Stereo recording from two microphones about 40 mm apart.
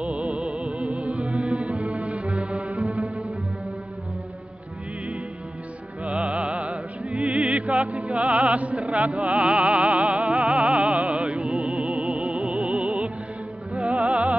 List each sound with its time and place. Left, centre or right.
0.0 s music: right
6.0 s music: right